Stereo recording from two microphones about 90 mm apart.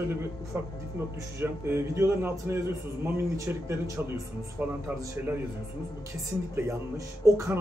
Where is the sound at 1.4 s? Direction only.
30° right (ahead or behind).